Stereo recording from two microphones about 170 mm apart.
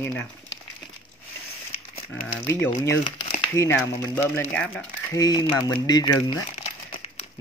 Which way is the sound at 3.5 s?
15° left (ahead or behind).